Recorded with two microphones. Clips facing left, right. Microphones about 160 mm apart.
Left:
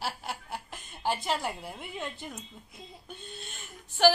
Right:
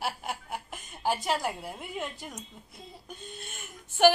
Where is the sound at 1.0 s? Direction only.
10° right (ahead or behind).